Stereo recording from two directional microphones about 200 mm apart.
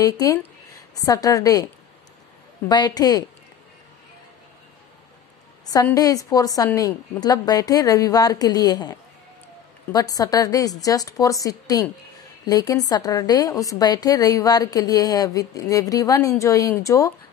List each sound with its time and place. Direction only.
0.0 s a woman's voice: 15° left (ahead or behind)
2.7 s a woman's voice: 20° left (ahead or behind)
5.7 s a woman's voice: 15° left (ahead or behind)